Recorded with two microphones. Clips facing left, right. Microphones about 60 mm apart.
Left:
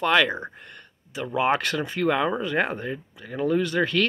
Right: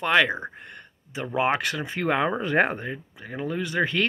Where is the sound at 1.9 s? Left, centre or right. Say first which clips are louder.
Left 1 dB; right.